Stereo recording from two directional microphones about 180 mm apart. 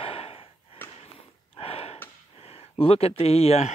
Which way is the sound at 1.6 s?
30° left (ahead or behind).